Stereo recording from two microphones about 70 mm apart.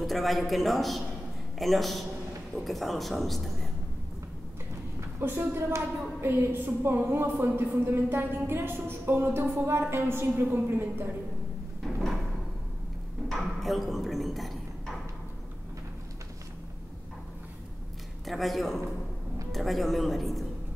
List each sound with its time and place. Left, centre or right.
0.0 s a man's voice: centre
5.2 s a woman's voice: right
11.8 s door: centre
13.3 s a sound: centre
18.2 s a man's voice: centre